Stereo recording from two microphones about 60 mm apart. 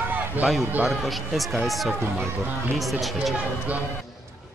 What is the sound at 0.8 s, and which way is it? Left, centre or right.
A man's voice, centre.